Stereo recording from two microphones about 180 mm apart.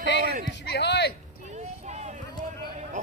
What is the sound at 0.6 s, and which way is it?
Speech, 65° left (ahead or behind).